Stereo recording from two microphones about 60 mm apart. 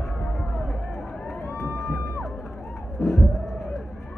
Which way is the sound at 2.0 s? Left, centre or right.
Left.